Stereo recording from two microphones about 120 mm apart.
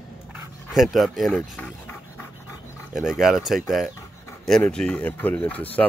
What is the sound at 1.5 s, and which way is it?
Speech, 15° left (ahead or behind).